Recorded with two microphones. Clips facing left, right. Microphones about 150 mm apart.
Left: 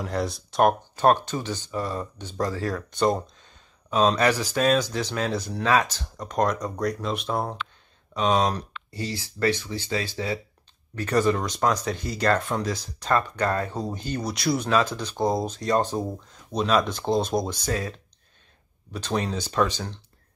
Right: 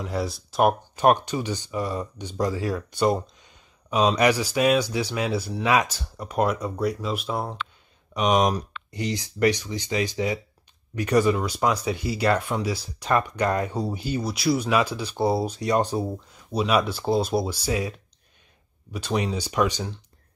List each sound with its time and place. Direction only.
0.0 s speech: centre (ahead or behind)
8.1 s speech: 15° right (ahead or behind)